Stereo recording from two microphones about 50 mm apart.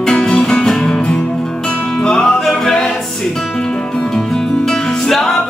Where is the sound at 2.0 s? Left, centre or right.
Centre.